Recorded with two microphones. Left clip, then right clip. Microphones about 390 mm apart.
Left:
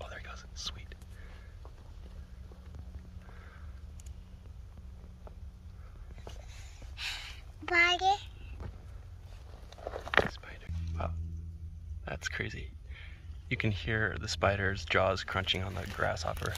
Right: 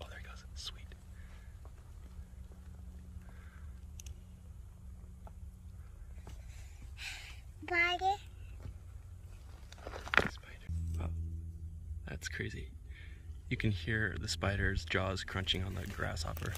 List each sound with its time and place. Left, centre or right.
0.0 s whispering: centre
7.0 s a sound: centre
9.7 s biting: centre
10.3 s whispering: centre
12.0 s speech: centre